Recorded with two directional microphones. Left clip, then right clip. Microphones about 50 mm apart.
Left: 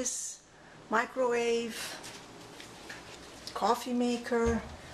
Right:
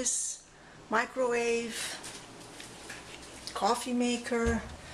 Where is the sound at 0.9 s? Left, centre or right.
Left.